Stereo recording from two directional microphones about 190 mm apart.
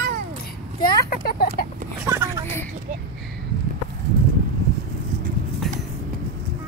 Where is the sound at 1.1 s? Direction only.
50° left (ahead or behind).